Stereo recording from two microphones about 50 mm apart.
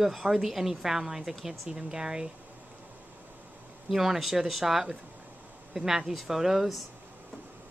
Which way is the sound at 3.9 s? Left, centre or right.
Centre.